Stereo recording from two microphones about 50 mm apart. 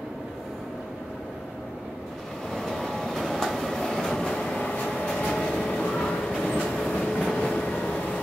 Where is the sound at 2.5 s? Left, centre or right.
Centre.